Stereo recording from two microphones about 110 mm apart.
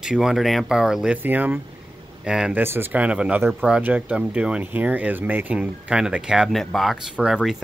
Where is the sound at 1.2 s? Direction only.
15° right (ahead or behind).